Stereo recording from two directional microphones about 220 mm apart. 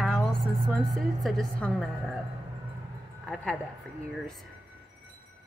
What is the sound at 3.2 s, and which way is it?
Speech, 5° left (ahead or behind).